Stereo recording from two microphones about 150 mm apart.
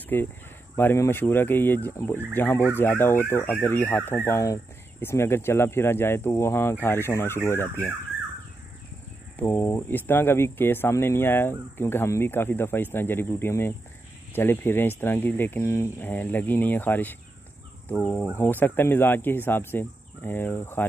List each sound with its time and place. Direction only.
0.1 s speech: 15° left (ahead or behind)
9.4 s speech: 15° left (ahead or behind)